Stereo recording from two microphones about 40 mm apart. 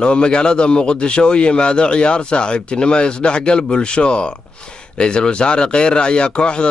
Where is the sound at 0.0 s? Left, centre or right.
Left.